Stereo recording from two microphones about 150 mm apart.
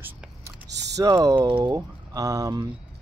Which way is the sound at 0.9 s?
25° right (ahead or behind).